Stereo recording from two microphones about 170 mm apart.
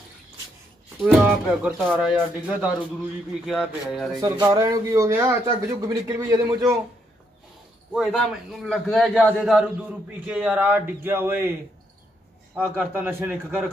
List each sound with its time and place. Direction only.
1.0 s a man's voice: 10° right (ahead or behind)
4.2 s a man's voice: 20° right (ahead or behind)
7.9 s a man's voice: centre (ahead or behind)
12.5 s speech: 10° right (ahead or behind)